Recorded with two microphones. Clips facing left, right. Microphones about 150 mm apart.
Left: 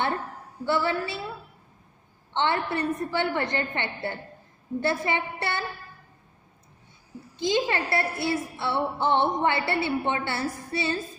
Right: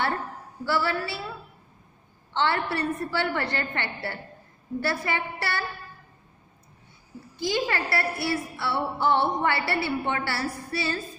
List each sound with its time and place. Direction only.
0.7 s a woman's voice: 20° left (ahead or behind)
2.3 s a woman's voice: 20° left (ahead or behind)
7.3 s a woman's voice: 20° left (ahead or behind)